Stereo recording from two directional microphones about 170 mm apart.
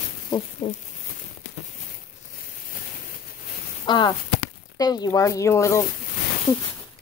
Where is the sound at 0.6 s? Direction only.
45° left (ahead or behind).